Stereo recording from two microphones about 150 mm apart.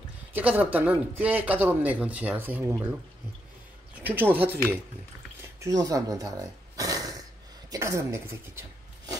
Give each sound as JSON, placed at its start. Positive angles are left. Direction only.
{"t": 0.3, "sound": "speech", "side_deg": -10}
{"t": 3.9, "sound": "speech", "side_deg": -10}
{"t": 5.4, "sound": "speech", "side_deg": -20}
{"t": 6.8, "sound": "a sound", "side_deg": -25}
{"t": 7.7, "sound": "speech", "side_deg": -20}